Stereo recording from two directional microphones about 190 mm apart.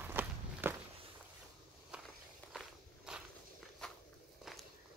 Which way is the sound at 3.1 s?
5° right (ahead or behind).